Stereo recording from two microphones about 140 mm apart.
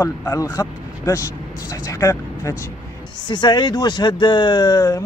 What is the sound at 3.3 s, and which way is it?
Speech, 35° left (ahead or behind).